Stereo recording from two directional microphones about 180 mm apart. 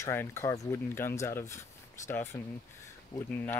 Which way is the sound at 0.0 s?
15° left (ahead or behind).